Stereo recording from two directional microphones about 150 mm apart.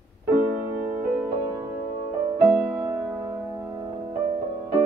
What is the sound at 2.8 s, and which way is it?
Music, 25° right (ahead or behind).